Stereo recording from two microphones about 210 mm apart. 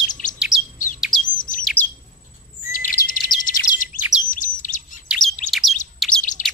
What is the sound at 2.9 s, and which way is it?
Bird, 40° left (ahead or behind).